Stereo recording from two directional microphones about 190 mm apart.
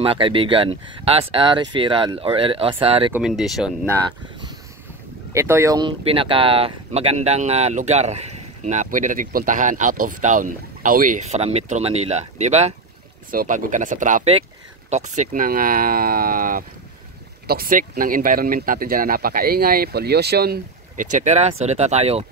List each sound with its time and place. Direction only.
0.0 s speech: 30° right (ahead or behind)
3.1 s speech: 5° right (ahead or behind)
5.3 s speech: 15° right (ahead or behind); by 12.7 s 35° right (ahead or behind)
13.3 s speech: 45° right (ahead or behind)